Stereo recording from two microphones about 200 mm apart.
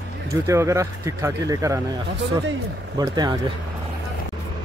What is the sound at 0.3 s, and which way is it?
Speech, 15° right (ahead or behind).